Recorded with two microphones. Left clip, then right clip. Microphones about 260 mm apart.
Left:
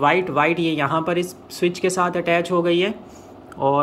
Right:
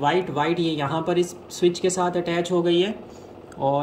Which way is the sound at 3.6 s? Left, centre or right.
Left.